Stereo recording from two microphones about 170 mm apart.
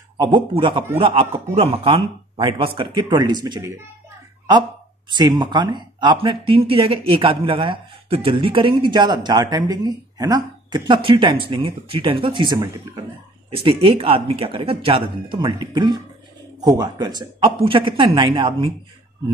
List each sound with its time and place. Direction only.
0.2 s speech: 30° right (ahead or behind)
5.1 s speech: 25° right (ahead or behind)